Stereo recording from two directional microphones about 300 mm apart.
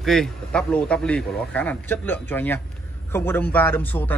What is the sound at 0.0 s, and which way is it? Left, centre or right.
A man's voice, centre.